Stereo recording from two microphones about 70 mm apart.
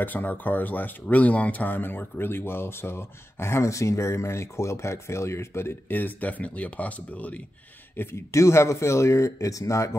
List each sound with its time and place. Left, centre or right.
0.0 s speech: left
8.0 s speech: left